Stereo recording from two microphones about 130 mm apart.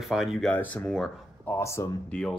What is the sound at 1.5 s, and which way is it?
Speech, 20° left (ahead or behind).